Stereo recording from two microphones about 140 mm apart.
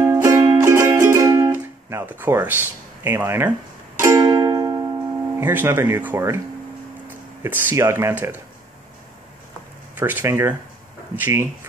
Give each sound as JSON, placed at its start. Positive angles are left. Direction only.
{"t": 0.0, "sound": "music", "side_deg": -20}
{"t": 5.4, "sound": "speech", "side_deg": -15}
{"t": 7.4, "sound": "speech", "side_deg": -15}
{"t": 9.9, "sound": "speech", "side_deg": -15}